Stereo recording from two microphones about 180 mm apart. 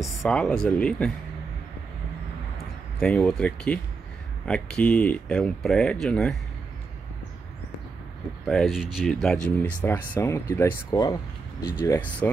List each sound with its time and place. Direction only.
0.0 s speech: centre (ahead or behind)
3.0 s speech: 5° left (ahead or behind)
8.5 s speech: centre (ahead or behind); by 12.1 s 15° left (ahead or behind)